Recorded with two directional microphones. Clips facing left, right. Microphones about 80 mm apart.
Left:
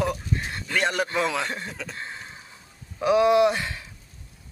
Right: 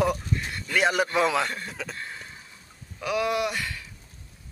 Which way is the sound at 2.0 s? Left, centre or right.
Left.